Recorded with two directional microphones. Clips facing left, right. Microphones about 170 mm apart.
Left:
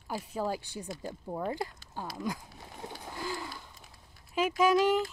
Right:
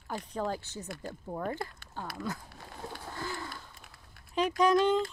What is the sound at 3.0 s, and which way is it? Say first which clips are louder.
Bird: left 2 dB; 15° left (ahead or behind).